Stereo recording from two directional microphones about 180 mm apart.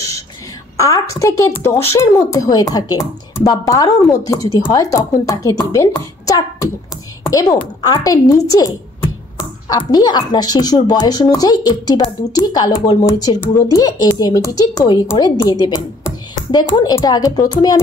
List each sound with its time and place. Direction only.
0.7 s a woman's voice: 15° left (ahead or behind)